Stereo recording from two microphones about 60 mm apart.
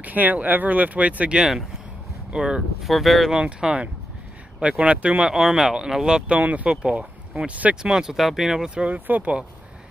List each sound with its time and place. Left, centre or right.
0.0 s speech: right
2.3 s speech: centre
2.9 s speech: centre
3.3 s speech: centre
7.9 s speech: centre